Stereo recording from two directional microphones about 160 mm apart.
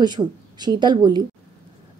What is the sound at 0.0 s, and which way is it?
Speech, 25° right (ahead or behind).